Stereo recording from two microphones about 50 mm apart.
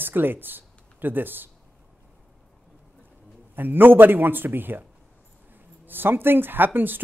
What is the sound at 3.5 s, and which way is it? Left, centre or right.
A man's voice, right.